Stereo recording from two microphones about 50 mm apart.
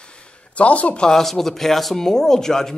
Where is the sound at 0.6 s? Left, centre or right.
Left.